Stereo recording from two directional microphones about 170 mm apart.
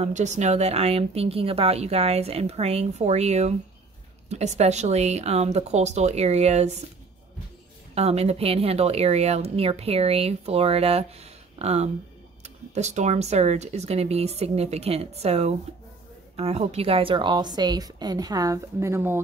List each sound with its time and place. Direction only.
0.0 s a woman's voice: 45° right (ahead or behind)
7.9 s a woman's voice: 40° right (ahead or behind); by 19.1 s 15° right (ahead or behind)